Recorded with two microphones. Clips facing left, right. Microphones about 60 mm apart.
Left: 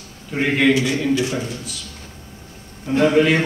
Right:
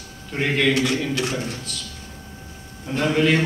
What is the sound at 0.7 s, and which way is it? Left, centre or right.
Speech, right.